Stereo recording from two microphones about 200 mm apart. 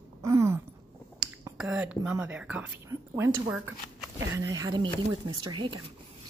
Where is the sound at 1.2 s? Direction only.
5° right (ahead or behind).